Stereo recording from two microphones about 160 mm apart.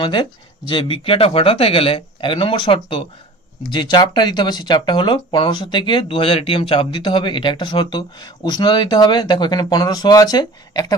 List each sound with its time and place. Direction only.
0.0 s speech: 30° left (ahead or behind)